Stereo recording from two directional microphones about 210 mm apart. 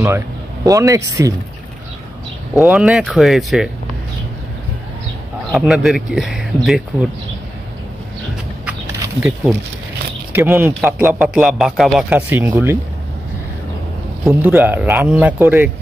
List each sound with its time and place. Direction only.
0.7 s speech: 15° right (ahead or behind)
2.6 s a man's voice: 5° right (ahead or behind)
5.5 s a man's voice: centre (ahead or behind)
8.6 s a sound: 5° right (ahead or behind)
10.3 s a man's voice: 10° right (ahead or behind)
14.2 s speech: 10° right (ahead or behind)